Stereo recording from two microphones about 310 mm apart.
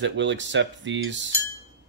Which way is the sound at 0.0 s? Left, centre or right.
Right.